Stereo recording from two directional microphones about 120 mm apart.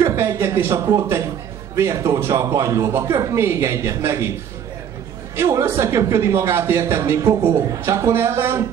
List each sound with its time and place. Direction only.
0.0 s speech: 25° right (ahead or behind)
5.3 s speech: 25° right (ahead or behind)